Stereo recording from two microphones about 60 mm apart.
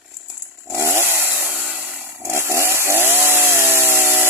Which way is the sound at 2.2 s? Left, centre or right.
Right.